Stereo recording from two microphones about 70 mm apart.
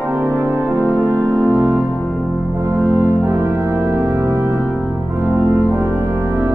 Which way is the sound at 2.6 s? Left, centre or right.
Right.